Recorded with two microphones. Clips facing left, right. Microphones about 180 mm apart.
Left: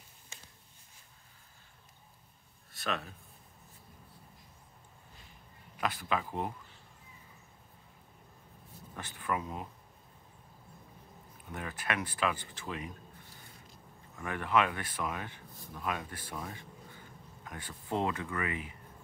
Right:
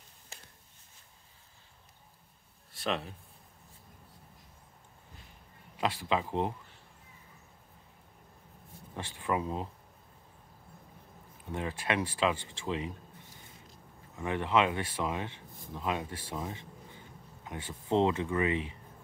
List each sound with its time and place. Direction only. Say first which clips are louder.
2.7 s a sound: right 3 dB; 30° right (ahead or behind)
5.8 s speech: right 3 dB; 25° right (ahead or behind)
8.9 s speech: right 3 dB; 25° right (ahead or behind)
11.5 s speech: right 4 dB; 25° right (ahead or behind)
14.1 s speech: right 2 dB; 20° right (ahead or behind)